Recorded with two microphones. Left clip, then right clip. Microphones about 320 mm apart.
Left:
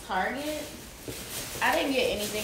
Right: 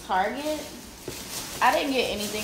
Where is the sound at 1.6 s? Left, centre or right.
Centre.